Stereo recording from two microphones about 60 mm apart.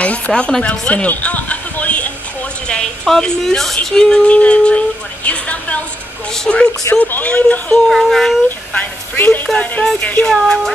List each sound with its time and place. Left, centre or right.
0.0 s a sound: centre
2.7 s a woman's voice: centre
7.0 s speech: left
7.7 s speech: centre
8.5 s speech: left
10.2 s speech: centre